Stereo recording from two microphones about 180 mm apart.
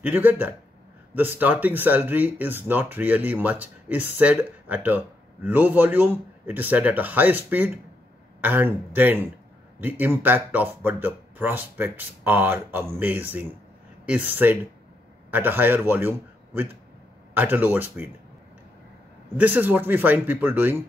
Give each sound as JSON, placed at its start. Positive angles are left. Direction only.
{"t": 0.0, "sound": "speech", "side_deg": -10}
{"t": 19.3, "sound": "speech", "side_deg": -10}